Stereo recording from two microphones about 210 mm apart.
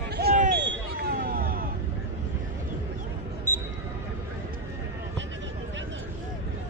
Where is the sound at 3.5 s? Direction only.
10° left (ahead or behind).